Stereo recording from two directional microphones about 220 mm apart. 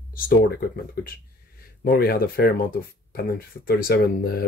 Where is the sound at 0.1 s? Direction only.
40° left (ahead or behind).